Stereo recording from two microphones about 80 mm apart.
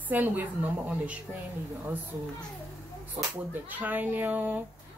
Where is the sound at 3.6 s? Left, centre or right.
Right.